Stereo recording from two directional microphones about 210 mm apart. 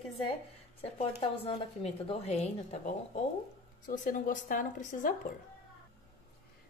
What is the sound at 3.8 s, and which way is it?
Speech, 40° left (ahead or behind).